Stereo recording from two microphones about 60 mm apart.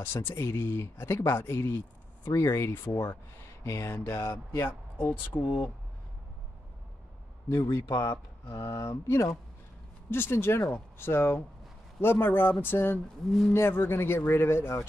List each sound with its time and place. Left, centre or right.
0.0 s speech: left
4.6 s speech: left
7.4 s speech: left
8.7 s speech: left
10.0 s speech: left